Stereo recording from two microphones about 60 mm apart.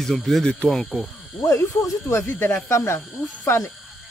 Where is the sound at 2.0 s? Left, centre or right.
Left.